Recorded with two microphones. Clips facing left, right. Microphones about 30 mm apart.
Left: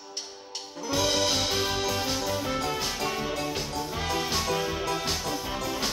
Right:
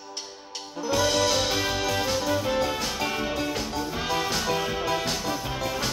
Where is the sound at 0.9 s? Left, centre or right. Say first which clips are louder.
Right 3 dB; centre.